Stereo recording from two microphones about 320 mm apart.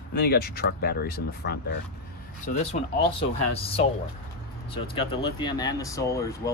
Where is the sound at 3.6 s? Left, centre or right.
Centre.